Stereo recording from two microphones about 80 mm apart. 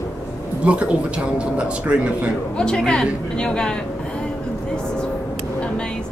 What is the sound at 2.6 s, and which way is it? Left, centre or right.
Speech, centre.